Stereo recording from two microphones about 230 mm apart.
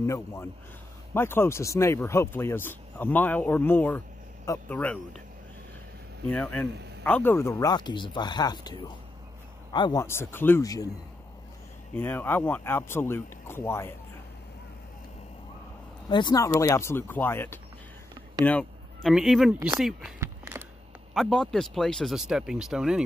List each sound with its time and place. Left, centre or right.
0.0 s speech: centre
6.2 s speech: centre
11.9 s speech: centre
16.1 s speech: centre
20.2 s a sound: centre
21.1 s speech: centre